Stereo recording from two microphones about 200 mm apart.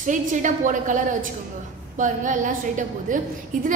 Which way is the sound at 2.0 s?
40° right (ahead or behind).